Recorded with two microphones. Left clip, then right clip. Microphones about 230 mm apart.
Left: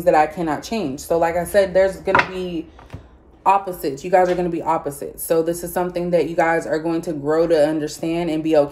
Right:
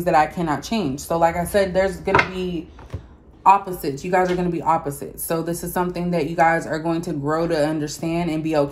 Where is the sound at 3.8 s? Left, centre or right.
Centre.